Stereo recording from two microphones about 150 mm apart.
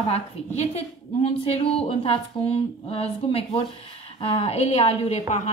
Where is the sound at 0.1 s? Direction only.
45° left (ahead or behind).